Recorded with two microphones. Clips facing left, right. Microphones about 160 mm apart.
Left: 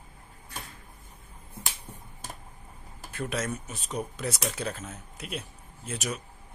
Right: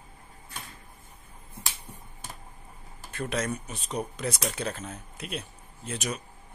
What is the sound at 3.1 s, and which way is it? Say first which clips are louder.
Speech: right 1 dB; 5° left (ahead or behind).